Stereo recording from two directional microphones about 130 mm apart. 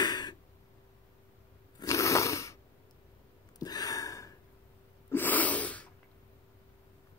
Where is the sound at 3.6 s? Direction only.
30° left (ahead or behind).